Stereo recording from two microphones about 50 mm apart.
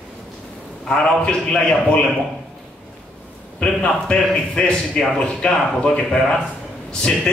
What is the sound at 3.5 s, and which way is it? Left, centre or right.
A man's voice, centre.